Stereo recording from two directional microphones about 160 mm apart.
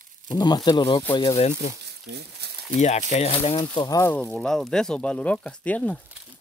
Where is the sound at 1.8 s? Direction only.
90° right.